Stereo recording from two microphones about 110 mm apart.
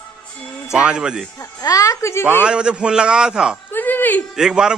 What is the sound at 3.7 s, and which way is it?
Speech, 15° left (ahead or behind).